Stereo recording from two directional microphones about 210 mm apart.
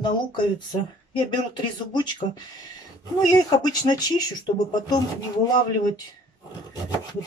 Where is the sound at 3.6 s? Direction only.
20° left (ahead or behind).